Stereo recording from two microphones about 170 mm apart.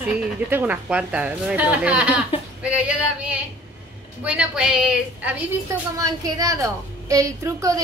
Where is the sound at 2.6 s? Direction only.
5° right (ahead or behind).